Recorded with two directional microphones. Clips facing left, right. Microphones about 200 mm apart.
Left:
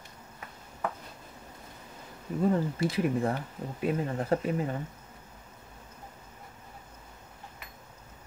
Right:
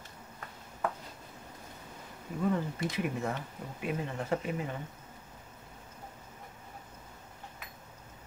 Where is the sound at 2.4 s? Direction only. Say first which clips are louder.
Left 4 dB; 35° left (ahead or behind).